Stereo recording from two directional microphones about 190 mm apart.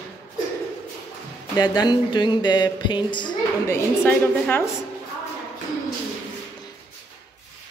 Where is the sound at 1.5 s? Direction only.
20° left (ahead or behind).